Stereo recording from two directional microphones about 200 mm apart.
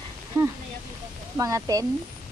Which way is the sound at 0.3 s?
15° right (ahead or behind).